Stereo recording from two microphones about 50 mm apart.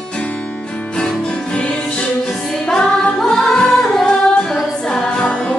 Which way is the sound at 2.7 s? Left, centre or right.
Centre.